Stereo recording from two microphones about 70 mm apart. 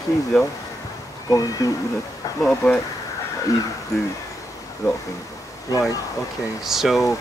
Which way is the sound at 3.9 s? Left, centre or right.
Left.